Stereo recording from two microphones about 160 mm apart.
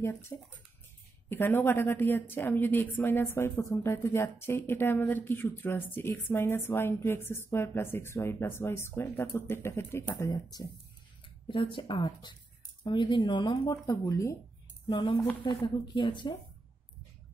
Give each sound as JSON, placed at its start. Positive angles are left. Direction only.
{"t": 0.0, "sound": "a woman's voice", "side_deg": 15}
{"t": 1.3, "sound": "a woman's voice", "side_deg": 15}
{"t": 14.9, "sound": "speech", "side_deg": 30}